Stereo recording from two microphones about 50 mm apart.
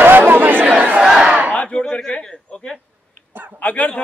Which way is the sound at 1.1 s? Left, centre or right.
Centre.